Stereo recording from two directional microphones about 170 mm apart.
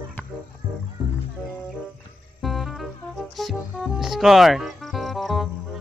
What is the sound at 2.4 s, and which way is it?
Music, centre (ahead or behind).